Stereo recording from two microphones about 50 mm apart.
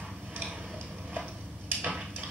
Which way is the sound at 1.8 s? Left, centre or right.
Right.